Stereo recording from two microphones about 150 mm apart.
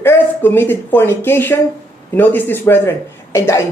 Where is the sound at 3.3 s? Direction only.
20° left (ahead or behind).